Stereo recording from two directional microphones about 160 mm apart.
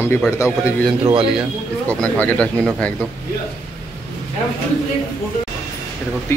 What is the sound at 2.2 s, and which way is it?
Speech, 5° left (ahead or behind).